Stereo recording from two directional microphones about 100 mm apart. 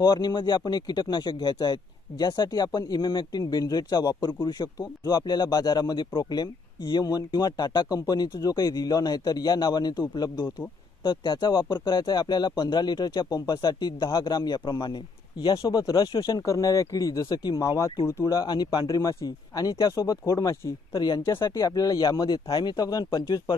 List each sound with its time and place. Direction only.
0.0 s speech: 45° left (ahead or behind)
17.6 s speech: 30° left (ahead or behind)
18.2 s speech: 40° left (ahead or behind)
20.9 s speech: 50° left (ahead or behind)
21.2 s speech: 25° left (ahead or behind); by 23.5 s 45° left (ahead or behind)